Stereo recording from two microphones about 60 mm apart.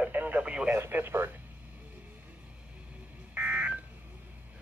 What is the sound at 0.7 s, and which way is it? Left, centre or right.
Speech, right.